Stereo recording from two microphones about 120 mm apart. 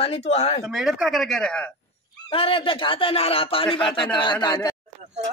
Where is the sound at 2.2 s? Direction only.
50° left (ahead or behind).